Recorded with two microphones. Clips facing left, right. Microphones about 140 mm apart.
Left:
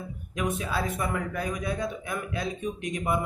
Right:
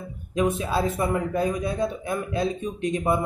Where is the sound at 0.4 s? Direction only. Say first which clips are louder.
Right 6 dB; 25° right (ahead or behind).